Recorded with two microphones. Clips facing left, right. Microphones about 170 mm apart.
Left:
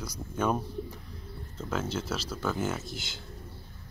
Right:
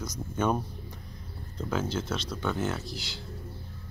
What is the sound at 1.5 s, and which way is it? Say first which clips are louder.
Speech: right 2 dB; 5° left (ahead or behind).